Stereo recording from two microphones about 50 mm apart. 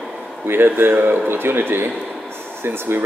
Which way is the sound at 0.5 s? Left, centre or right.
Right.